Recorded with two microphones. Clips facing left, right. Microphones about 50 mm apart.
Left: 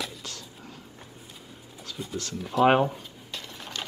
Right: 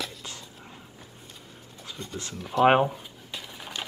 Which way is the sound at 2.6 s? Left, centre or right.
Centre.